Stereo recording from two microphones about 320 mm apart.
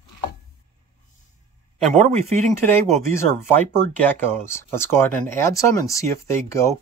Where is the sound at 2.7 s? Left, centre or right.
Centre.